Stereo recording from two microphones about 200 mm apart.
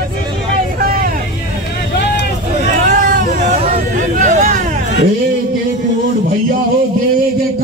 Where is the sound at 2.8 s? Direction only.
40° right (ahead or behind).